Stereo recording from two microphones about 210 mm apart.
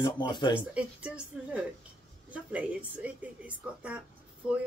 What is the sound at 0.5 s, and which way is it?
A woman's voice, 5° right (ahead or behind).